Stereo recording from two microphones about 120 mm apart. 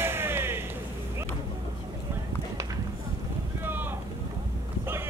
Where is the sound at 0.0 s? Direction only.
20° right (ahead or behind).